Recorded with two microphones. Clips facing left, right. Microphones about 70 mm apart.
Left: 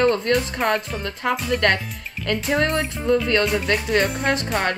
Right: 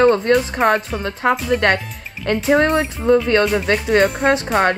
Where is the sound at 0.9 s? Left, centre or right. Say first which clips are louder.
Right 5 dB; right.